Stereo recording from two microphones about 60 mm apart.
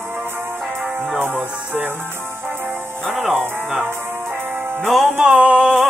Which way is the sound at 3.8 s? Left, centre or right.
Right.